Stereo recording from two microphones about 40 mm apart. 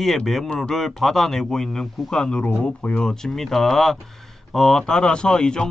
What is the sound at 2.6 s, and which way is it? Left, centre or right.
Speech, left.